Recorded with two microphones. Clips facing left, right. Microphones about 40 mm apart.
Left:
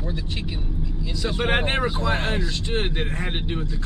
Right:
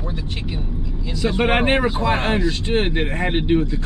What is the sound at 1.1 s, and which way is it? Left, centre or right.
Speech, centre.